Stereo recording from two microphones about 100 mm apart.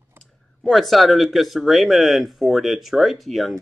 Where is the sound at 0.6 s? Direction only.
Centre (ahead or behind).